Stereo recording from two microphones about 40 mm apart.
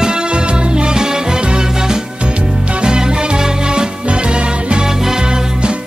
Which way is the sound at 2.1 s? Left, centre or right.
Right.